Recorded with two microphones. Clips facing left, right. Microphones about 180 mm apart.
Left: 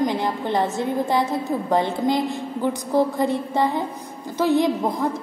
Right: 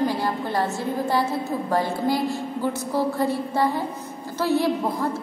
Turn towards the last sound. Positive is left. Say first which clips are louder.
# left 2 dB
turn(degrees=15)  # may be behind; listen again after turning